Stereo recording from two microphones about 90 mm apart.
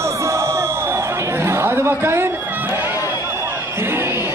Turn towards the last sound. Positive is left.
turn(degrees=-25)  # may be behind; listen again after turning